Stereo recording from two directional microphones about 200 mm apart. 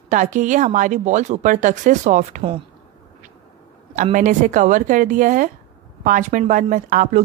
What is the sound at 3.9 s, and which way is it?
Speech, 40° right (ahead or behind).